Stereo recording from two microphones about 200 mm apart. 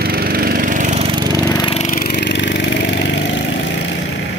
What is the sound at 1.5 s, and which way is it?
Lawn mower, 20° left (ahead or behind).